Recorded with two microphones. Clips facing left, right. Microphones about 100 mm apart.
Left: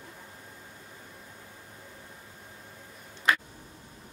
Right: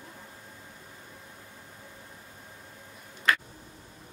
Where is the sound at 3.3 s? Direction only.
15° left (ahead or behind).